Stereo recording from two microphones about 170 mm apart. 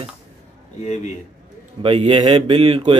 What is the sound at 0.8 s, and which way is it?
Speech, 45° left (ahead or behind).